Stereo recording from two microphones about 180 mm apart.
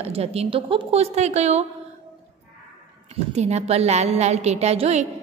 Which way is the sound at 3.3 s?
35° right (ahead or behind).